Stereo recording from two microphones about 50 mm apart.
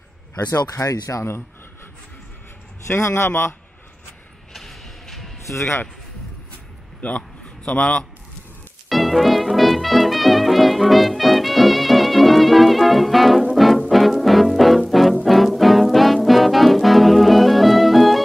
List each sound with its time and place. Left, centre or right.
0.5 s speech: left
2.9 s speech: left
3.3 s a man's voice: left
4.6 s a sound: centre
7.0 s a man's voice: left
8.8 s music: centre